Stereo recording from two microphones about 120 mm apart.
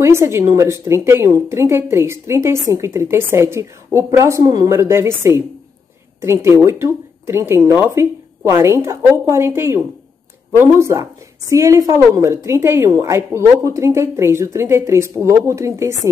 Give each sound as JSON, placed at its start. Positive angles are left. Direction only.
{"t": 0.0, "sound": "a woman's voice", "side_deg": -20}